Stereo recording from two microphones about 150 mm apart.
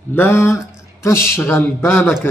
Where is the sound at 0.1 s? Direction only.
15° left (ahead or behind).